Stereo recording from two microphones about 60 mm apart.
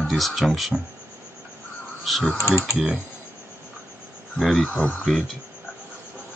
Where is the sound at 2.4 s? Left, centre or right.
Left.